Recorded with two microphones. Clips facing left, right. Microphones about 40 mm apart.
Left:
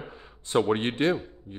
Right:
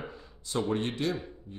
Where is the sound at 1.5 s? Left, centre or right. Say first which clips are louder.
Left 4 dB; left.